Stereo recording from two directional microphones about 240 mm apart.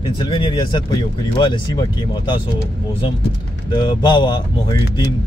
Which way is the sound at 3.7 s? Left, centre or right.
Centre.